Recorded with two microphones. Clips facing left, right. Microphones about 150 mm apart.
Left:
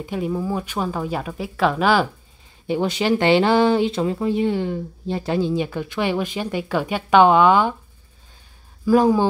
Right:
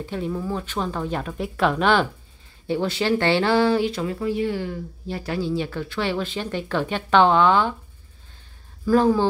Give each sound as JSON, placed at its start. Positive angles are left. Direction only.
{"t": 0.0, "sound": "speech", "side_deg": 15}
{"t": 2.6, "sound": "speech", "side_deg": 15}
{"t": 8.8, "sound": "speech", "side_deg": 10}